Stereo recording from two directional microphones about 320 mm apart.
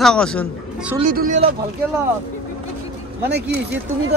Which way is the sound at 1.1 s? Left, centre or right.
Right.